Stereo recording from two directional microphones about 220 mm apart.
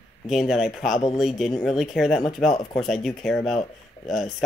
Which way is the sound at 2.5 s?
20° left (ahead or behind).